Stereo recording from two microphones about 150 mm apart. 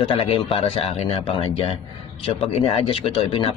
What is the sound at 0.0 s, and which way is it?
Speech, 40° left (ahead or behind).